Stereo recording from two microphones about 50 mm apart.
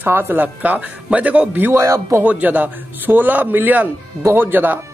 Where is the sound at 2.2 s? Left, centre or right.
Right.